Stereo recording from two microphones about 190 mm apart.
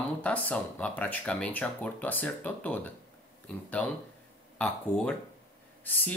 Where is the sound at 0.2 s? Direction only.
5° left (ahead or behind).